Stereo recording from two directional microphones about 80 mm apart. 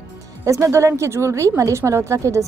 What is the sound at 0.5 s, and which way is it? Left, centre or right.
A woman's voice, right.